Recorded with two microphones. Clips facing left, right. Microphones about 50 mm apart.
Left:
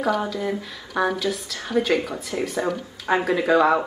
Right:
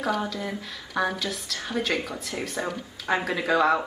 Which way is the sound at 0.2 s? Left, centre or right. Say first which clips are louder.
Left 5 dB; centre.